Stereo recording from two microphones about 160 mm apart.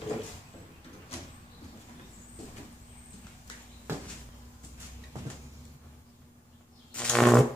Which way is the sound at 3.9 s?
15° right (ahead or behind).